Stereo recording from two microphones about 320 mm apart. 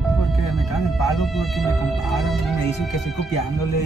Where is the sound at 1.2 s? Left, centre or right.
Centre.